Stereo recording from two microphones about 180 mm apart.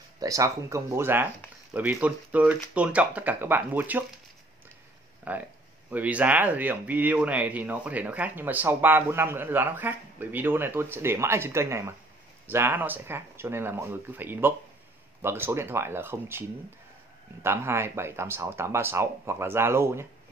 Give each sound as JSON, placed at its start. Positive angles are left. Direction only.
{"t": 0.2, "sound": "speech", "side_deg": -20}
{"t": 5.3, "sound": "speech", "side_deg": -10}